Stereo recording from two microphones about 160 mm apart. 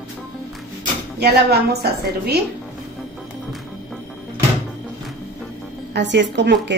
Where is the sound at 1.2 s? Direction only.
85° right.